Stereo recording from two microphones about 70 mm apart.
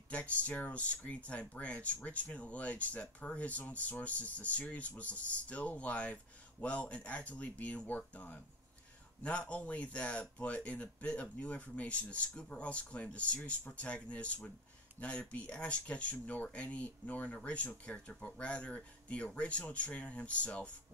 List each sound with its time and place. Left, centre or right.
0.1 s speech: centre